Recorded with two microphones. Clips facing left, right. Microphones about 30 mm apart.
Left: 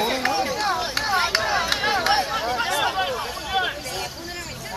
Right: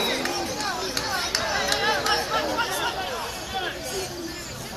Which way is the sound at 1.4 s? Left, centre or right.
Centre.